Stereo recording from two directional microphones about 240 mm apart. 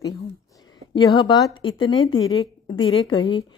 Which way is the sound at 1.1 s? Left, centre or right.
Centre.